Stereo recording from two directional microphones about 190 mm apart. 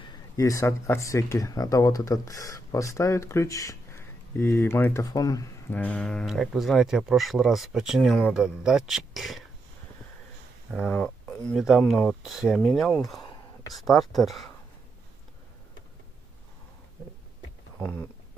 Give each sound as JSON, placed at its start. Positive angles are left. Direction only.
{"t": 0.0, "sound": "speech", "side_deg": 15}
{"t": 10.9, "sound": "speech", "side_deg": 5}
{"t": 13.2, "sound": "whispering", "side_deg": 20}
{"t": 13.7, "sound": "speech", "side_deg": 0}
{"t": 17.7, "sound": "speech", "side_deg": 10}